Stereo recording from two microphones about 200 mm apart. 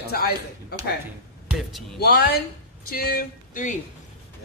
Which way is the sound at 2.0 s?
55° left (ahead or behind).